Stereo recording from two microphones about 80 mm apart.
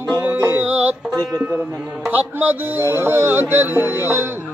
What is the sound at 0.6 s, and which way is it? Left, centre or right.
Music, right.